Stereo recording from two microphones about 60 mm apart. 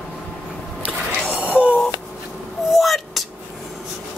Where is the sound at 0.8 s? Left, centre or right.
Right.